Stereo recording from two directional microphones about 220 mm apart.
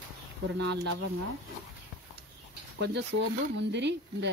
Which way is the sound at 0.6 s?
55° right (ahead or behind).